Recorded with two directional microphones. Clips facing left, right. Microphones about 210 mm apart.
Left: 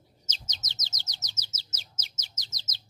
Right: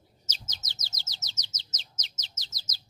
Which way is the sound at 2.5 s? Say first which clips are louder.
Left 1 dB; 25° left (ahead or behind).